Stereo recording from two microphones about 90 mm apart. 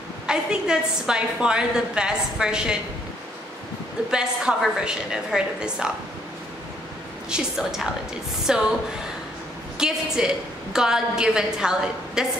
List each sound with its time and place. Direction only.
0.3 s a woman's voice: 10° right (ahead or behind)
4.1 s a woman's voice: 10° right (ahead or behind)
7.2 s a woman's voice: 5° right (ahead or behind)
9.8 s a woman's voice: 5° right (ahead or behind)